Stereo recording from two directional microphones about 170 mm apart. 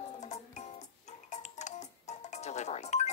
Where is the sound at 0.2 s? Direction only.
40° left (ahead or behind).